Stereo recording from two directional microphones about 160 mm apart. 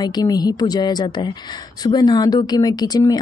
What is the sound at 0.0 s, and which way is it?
Speech, 25° left (ahead or behind).